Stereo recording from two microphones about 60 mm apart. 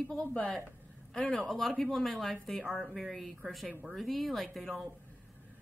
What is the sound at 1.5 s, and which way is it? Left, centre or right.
Speech, centre.